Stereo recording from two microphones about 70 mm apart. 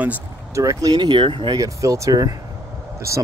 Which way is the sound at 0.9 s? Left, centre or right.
Right.